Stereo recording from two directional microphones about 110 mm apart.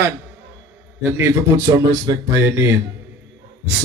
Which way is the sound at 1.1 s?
30° right (ahead or behind).